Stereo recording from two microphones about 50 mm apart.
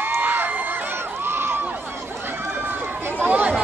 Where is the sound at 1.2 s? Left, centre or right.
Right.